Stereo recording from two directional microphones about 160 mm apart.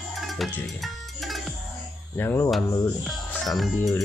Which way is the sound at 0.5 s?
Centre (ahead or behind).